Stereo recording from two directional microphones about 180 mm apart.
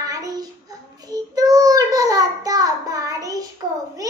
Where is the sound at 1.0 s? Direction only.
20° right (ahead or behind).